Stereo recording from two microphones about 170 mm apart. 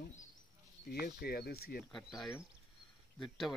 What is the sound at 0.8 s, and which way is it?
Speech, 60° left (ahead or behind).